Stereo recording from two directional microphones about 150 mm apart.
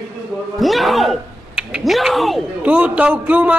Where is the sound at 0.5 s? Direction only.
Centre (ahead or behind).